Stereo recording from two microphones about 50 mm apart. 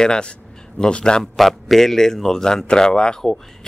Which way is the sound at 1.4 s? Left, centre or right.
Centre.